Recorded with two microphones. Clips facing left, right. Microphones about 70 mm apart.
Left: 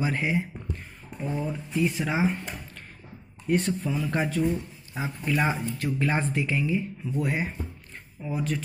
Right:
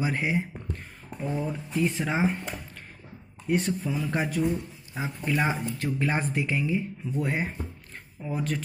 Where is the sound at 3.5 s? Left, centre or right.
Centre.